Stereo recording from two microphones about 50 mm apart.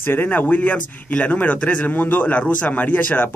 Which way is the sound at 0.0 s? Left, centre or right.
Left.